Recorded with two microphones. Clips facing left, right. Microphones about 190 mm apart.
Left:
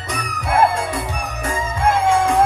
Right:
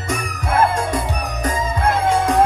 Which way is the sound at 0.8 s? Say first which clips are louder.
Right 2 dB; 45° right (ahead or behind).